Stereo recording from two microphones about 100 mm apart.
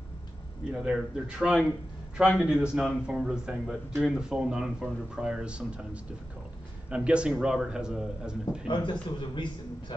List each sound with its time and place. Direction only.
0.7 s speech: 10° right (ahead or behind)
6.9 s speech: 10° right (ahead or behind)
8.6 s a man's voice: 55° left (ahead or behind)